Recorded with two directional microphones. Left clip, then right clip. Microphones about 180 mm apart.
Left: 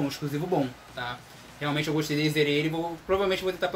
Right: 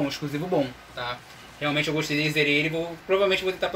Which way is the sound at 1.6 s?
40° left (ahead or behind).